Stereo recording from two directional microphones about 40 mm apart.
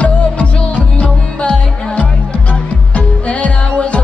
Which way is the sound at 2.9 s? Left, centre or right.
Left.